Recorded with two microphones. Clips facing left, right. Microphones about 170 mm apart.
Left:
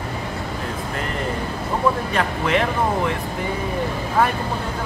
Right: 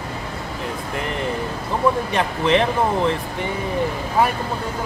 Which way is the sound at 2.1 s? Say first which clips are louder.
Right 2 dB; 25° right (ahead or behind).